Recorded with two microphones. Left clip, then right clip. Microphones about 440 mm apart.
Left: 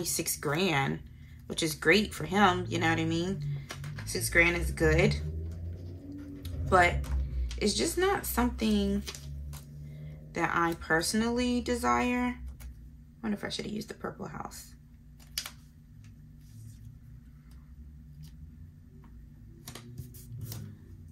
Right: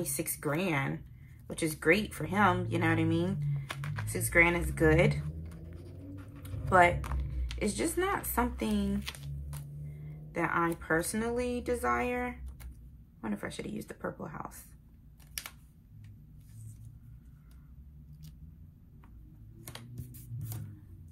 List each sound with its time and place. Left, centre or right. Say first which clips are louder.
0.1 s speech: left 2 dB; centre
6.4 s a sound: even; centre
7.4 s speech: left 3 dB; centre
10.3 s speech: left 2 dB; centre